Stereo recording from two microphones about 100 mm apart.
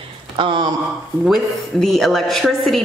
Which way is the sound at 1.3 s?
Centre (ahead or behind).